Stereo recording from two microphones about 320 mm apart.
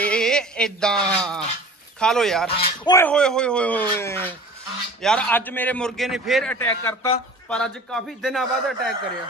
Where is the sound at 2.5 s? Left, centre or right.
Centre.